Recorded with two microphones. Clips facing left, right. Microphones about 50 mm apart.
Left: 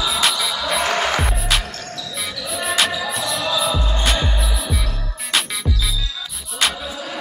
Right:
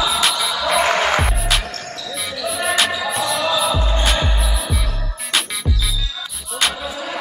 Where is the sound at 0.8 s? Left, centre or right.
Centre.